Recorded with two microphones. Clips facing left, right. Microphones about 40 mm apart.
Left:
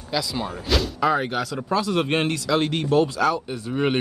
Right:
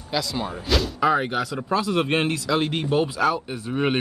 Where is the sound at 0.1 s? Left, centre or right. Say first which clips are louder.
Even; centre.